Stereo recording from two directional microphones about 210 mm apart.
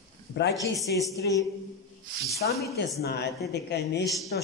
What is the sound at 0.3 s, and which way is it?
Speech, 55° left (ahead or behind).